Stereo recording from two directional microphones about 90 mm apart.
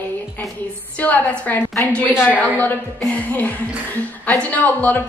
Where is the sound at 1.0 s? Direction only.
20° left (ahead or behind).